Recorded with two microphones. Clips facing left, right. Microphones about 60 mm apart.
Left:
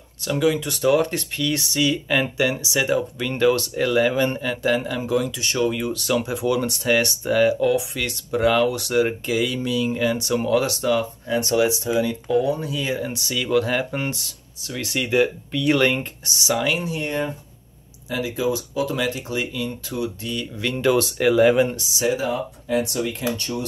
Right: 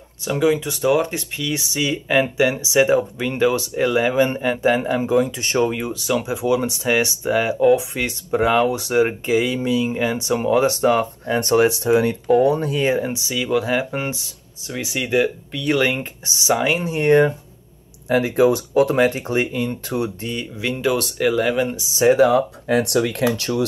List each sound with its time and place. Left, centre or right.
0.2 s speech: centre; by 13.0 s right
13.0 s speech: centre
16.0 s speech: right
17.0 s speech: right
20.5 s speech: centre
22.1 s speech: right